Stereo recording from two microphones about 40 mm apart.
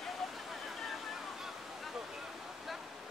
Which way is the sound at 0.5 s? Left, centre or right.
Centre.